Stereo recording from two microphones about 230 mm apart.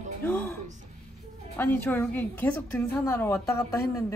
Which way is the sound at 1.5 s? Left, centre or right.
Centre.